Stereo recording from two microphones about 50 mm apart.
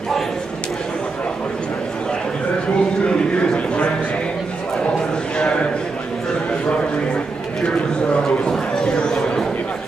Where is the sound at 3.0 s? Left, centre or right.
Left.